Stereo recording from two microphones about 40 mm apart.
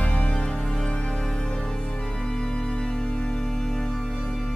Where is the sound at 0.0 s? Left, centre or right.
Left.